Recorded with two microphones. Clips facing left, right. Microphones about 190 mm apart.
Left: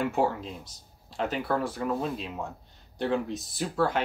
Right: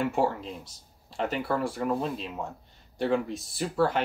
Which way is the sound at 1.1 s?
Centre (ahead or behind).